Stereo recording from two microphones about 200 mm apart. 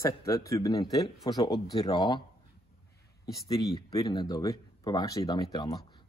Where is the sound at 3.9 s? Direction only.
20° left (ahead or behind).